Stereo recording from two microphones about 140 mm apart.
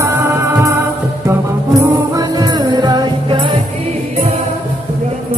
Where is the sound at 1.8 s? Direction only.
30° right (ahead or behind).